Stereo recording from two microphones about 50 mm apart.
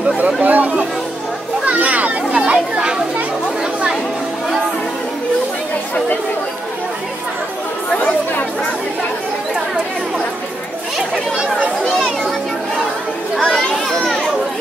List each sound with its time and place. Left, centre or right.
0.4 s chatter: right
1.6 s children playing: right
2.3 s children playing: centre
11.0 s chatter: centre
13.4 s children playing: centre